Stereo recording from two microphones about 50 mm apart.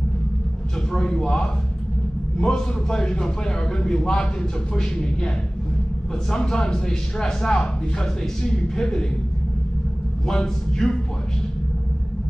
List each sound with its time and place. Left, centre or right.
0.9 s a man's voice: centre
6.3 s a man's voice: centre
10.2 s a man's voice: centre